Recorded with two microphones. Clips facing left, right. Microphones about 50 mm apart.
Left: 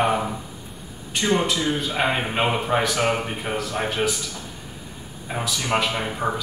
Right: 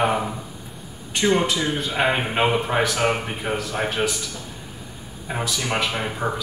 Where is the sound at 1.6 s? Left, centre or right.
Centre.